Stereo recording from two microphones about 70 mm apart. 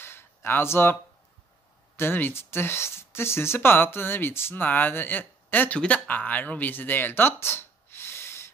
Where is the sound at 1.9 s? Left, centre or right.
Left.